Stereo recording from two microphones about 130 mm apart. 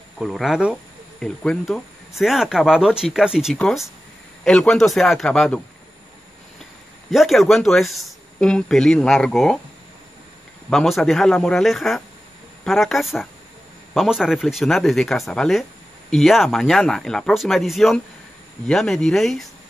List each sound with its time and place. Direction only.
0.2 s speech: centre (ahead or behind)
1.2 s speech: 5° left (ahead or behind)
7.1 s speech: centre (ahead or behind)
10.7 s speech: centre (ahead or behind)